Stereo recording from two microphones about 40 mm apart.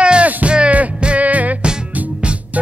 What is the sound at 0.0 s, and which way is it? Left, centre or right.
Music, right.